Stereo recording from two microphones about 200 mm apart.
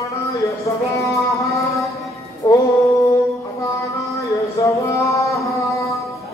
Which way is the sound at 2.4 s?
20° left (ahead or behind).